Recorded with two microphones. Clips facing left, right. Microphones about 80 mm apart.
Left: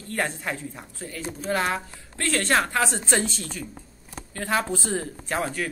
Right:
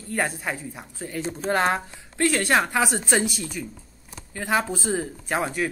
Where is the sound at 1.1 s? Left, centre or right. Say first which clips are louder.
Right 3 dB; right.